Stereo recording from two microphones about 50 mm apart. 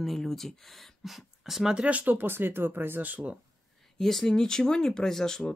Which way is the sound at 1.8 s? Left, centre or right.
Right.